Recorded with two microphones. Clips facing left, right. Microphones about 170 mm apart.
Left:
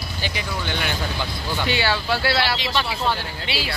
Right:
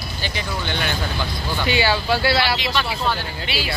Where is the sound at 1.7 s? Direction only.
Centre (ahead or behind).